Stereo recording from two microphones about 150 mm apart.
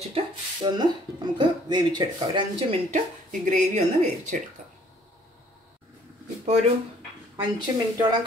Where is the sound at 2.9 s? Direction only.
55° right (ahead or behind).